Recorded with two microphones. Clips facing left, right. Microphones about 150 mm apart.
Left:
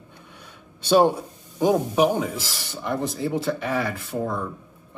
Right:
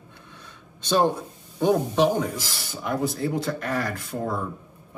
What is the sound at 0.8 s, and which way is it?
Speech, 10° left (ahead or behind).